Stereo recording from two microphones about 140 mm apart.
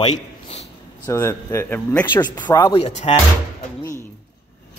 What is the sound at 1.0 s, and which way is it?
Speech, 20° left (ahead or behind).